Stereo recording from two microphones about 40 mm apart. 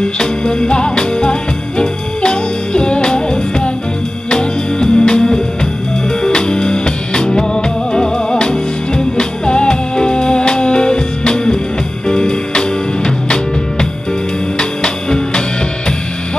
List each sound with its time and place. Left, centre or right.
0.0 s music: left